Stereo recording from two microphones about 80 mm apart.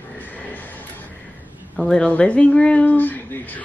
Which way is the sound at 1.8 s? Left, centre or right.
Centre.